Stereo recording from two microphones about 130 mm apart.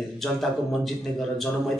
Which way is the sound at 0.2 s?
Centre (ahead or behind).